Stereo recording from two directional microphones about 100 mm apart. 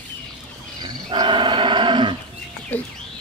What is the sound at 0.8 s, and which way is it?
Wild animals, 50° right (ahead or behind).